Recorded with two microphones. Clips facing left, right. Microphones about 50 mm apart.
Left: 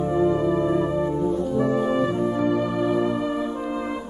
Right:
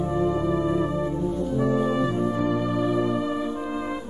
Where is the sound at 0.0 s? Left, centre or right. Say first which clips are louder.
Left 3 dB; centre.